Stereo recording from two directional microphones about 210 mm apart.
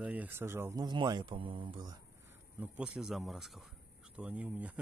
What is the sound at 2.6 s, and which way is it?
Speech, 5° right (ahead or behind).